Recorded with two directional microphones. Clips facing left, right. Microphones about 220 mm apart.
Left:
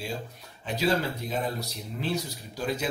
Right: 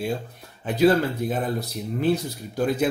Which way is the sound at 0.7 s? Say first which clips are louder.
Right 8 dB; 55° right (ahead or behind).